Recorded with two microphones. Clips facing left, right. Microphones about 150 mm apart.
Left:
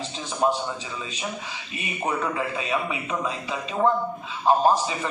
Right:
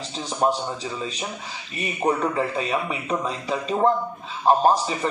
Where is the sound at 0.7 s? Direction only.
35° right (ahead or behind).